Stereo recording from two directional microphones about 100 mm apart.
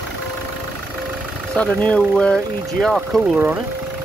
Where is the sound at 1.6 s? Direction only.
15° left (ahead or behind).